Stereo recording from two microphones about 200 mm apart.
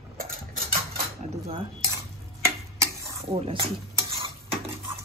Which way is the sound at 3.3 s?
25° right (ahead or behind).